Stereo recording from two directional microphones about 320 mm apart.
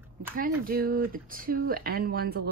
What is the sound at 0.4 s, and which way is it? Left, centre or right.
Speech, right.